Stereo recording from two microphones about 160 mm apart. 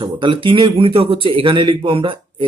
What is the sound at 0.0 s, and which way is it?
Speech, 30° right (ahead or behind).